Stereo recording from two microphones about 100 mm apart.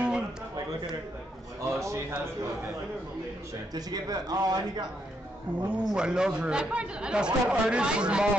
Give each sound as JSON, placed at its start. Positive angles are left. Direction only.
{"t": 1.7, "sound": "a sound", "side_deg": -30}
{"t": 3.7, "sound": "a man's voice", "side_deg": -40}
{"t": 5.6, "sound": "speech", "side_deg": -10}